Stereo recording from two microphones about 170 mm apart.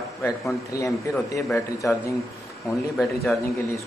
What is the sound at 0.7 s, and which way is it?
Speech, 20° left (ahead or behind).